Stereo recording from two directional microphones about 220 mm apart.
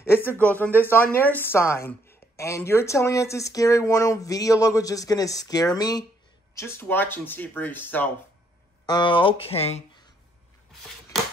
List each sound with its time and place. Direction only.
0.0 s speech: 10° left (ahead or behind)
8.8 s speech: 20° left (ahead or behind)